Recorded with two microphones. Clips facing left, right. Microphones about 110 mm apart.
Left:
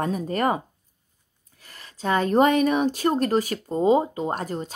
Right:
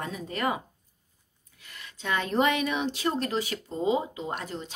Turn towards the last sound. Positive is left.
turn(degrees=45)  # may be behind; listen again after turning